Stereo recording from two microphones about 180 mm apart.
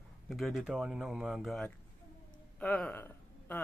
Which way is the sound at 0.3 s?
Centre (ahead or behind).